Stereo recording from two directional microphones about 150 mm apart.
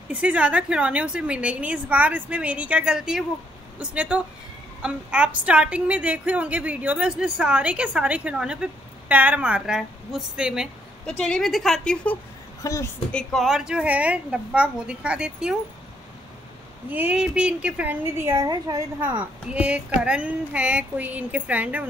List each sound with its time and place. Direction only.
0.1 s a woman's voice: 10° right (ahead or behind); by 12.2 s 5° left (ahead or behind)
12.6 s a woman's voice: 20° left (ahead or behind)
13.1 s a woman's voice: 5° left (ahead or behind)
16.9 s a woman's voice: 10° right (ahead or behind)
18.9 s a woman's voice: 10° right (ahead or behind)